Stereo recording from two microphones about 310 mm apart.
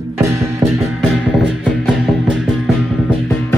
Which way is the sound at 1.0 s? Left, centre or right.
Centre.